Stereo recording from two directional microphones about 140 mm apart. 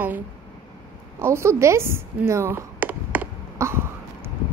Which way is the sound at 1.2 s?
20° right (ahead or behind).